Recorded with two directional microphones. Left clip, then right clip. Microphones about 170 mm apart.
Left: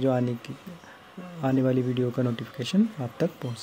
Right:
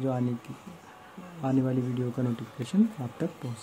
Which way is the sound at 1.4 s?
20° left (ahead or behind).